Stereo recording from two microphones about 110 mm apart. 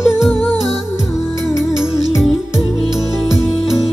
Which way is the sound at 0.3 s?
20° left (ahead or behind).